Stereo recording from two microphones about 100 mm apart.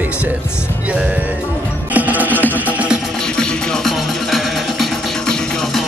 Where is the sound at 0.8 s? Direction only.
10° right (ahead or behind).